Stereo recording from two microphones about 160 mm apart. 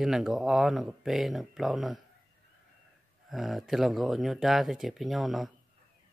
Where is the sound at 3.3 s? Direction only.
Centre (ahead or behind).